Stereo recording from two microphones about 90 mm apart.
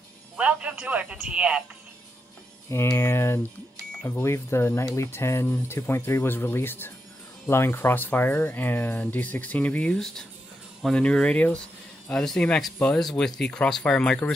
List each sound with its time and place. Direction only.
0.4 s speech: 15° right (ahead or behind)
2.9 s speech: 30° left (ahead or behind)
9.9 s speech: 5° left (ahead or behind)